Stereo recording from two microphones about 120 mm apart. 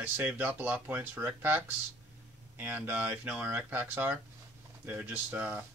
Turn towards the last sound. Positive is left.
turn(degrees=-15)  # may be behind; listen again after turning